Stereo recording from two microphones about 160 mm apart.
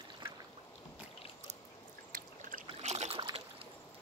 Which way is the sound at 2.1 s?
60° right (ahead or behind).